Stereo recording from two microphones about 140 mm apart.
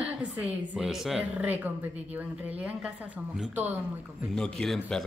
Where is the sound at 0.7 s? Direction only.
Centre (ahead or behind).